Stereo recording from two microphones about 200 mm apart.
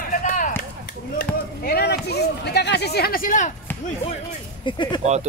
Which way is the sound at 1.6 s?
50° left (ahead or behind).